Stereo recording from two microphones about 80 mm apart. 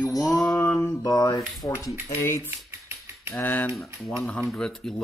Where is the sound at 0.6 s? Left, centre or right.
Left.